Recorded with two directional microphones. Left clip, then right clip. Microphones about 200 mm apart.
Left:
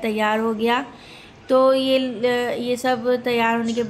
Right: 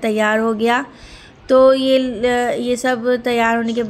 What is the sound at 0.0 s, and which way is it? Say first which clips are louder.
A woman's voice: right 4 dB; 25° right (ahead or behind).